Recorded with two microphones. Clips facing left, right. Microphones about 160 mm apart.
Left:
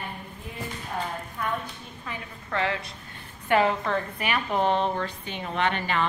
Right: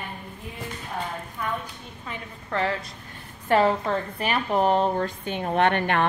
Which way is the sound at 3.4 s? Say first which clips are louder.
Right 2 dB; 35° right (ahead or behind).